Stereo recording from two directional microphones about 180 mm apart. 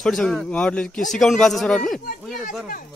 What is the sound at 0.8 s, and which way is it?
Speech, 50° left (ahead or behind).